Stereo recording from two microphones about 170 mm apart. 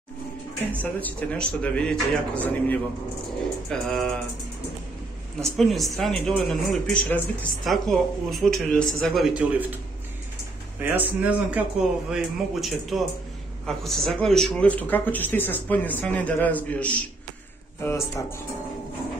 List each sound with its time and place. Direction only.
1.0 s speech: 5° left (ahead or behind)
5.4 s speech: centre (ahead or behind)
10.8 s speech: 10° right (ahead or behind); by 18.2 s 15° left (ahead or behind)